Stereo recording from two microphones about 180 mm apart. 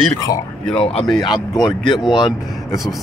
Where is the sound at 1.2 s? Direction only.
20° left (ahead or behind).